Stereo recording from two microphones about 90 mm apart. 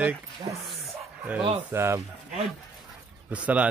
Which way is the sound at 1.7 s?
30° right (ahead or behind).